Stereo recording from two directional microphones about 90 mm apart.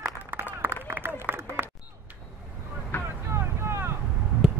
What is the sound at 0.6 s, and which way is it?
Run, 25° right (ahead or behind).